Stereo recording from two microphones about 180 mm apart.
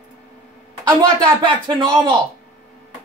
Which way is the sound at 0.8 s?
25° right (ahead or behind).